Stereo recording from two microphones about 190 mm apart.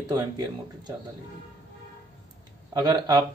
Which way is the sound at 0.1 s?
20° right (ahead or behind).